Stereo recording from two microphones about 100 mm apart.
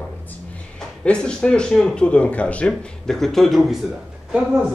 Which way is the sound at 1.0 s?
10° left (ahead or behind).